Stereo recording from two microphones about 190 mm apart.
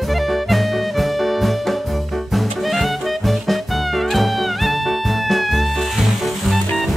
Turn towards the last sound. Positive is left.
turn(degrees=0)  # may be behind; listen again after turning